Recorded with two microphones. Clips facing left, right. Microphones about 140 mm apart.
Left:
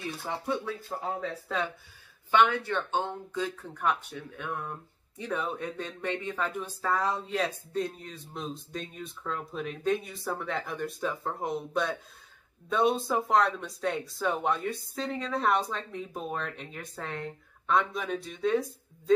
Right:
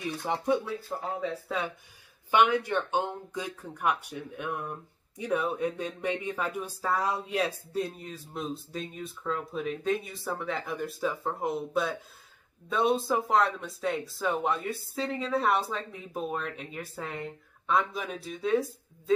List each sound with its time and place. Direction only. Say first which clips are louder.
0.0 s speech: right 4 dB; 15° right (ahead or behind)